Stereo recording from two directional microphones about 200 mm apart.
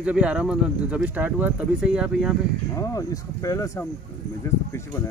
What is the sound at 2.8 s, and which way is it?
Speech, 15° left (ahead or behind).